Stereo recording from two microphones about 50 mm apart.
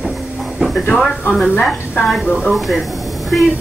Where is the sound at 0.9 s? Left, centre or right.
Centre.